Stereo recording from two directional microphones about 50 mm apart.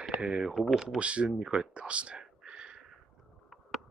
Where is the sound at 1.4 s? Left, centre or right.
Centre.